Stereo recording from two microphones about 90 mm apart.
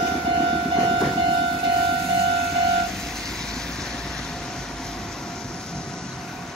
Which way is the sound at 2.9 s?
5° left (ahead or behind).